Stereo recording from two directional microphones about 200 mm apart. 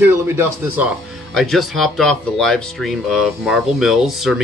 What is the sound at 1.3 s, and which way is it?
Speech, centre (ahead or behind).